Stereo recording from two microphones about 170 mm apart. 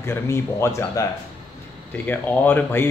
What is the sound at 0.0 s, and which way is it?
Speech, 15° left (ahead or behind).